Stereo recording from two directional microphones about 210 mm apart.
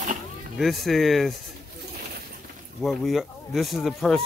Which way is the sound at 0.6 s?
Centre (ahead or behind).